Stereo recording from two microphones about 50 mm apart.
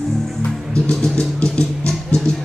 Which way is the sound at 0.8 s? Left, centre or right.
Left.